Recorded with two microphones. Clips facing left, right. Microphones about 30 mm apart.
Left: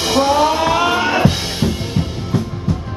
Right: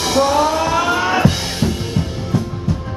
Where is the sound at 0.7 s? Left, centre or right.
Left; by 2.4 s centre.